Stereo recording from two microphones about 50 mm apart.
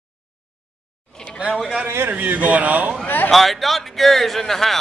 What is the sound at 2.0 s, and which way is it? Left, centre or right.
Speech, right.